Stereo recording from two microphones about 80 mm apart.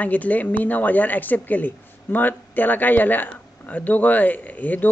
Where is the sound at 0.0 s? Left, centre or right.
Left.